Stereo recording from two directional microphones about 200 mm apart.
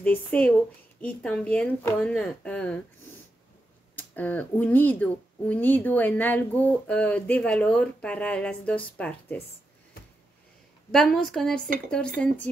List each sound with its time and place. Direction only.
0.0 s speech: 5° left (ahead or behind)
3.9 s speech: 10° left (ahead or behind)
10.9 s speech: centre (ahead or behind)